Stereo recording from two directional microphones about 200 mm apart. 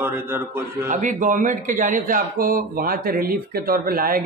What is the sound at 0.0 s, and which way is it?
Speech, 10° right (ahead or behind).